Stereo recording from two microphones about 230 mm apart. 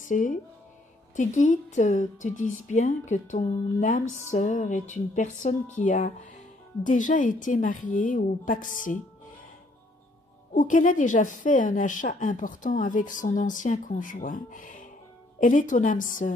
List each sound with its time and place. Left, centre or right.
0.0 s a woman's voice: left
10.5 s a woman's voice: left